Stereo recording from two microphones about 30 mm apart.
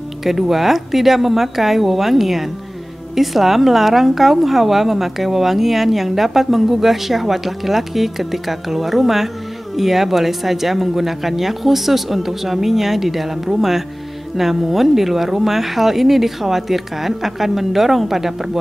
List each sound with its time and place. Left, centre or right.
0.2 s speech: centre